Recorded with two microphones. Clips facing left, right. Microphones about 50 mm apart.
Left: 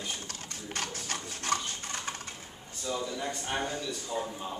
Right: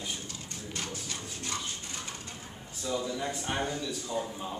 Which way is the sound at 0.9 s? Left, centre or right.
Left.